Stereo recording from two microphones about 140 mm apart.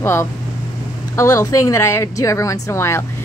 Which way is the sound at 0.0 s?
20° left (ahead or behind).